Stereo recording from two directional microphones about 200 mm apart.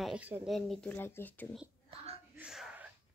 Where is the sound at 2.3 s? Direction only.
5° right (ahead or behind).